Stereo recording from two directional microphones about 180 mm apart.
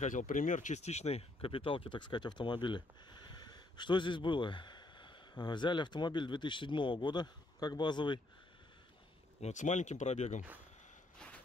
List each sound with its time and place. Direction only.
0.0 s speech: 45° left (ahead or behind); by 8.2 s 25° left (ahead or behind)
9.4 s speech: 40° left (ahead or behind)
11.1 s walk: 5° left (ahead or behind)